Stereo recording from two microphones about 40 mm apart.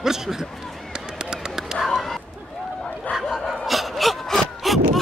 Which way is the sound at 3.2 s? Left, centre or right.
Centre.